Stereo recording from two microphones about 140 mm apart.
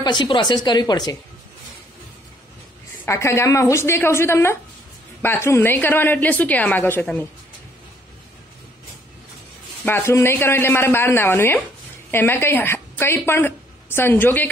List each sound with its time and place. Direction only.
0.0 s speech: 35° left (ahead or behind)
3.1 s a woman's voice: 20° left (ahead or behind)
9.8 s a woman's voice: 15° left (ahead or behind)